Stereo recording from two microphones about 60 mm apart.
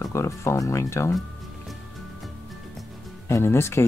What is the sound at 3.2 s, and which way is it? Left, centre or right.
Speech, left.